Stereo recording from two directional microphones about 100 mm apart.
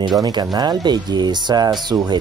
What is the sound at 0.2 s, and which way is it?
Speech, 45° right (ahead or behind).